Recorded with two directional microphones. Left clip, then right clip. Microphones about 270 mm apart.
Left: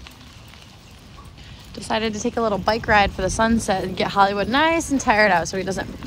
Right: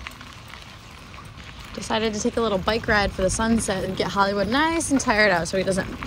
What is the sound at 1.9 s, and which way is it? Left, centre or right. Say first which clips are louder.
Speech: left 1 dB; centre.